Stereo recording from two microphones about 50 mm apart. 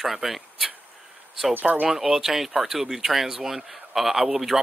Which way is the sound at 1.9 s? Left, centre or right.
Centre.